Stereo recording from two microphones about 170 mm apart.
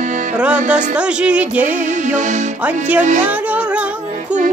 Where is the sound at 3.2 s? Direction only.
10° right (ahead or behind).